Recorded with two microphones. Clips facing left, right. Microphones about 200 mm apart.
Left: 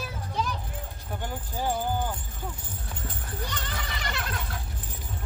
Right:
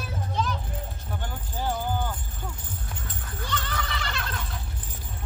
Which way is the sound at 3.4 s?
15° left (ahead or behind).